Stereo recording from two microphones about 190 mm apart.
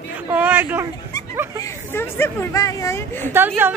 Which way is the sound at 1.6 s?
10° left (ahead or behind).